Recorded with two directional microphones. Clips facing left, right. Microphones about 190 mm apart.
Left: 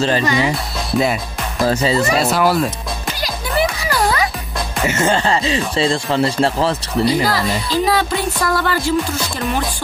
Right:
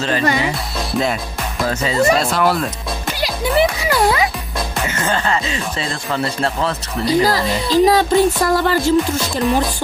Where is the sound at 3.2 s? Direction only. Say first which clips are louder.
Right 4 dB; 20° right (ahead or behind).